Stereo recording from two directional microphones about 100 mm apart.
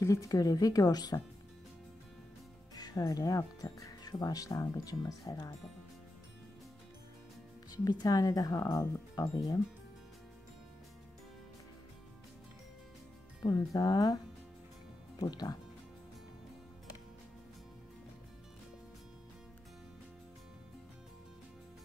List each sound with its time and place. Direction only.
0.0 s speech: 35° left (ahead or behind)
2.7 s speech: 40° left (ahead or behind)
7.7 s speech: 40° left (ahead or behind)
13.4 s speech: 40° left (ahead or behind)